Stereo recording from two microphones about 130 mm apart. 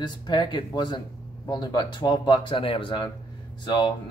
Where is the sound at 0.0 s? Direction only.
35° left (ahead or behind).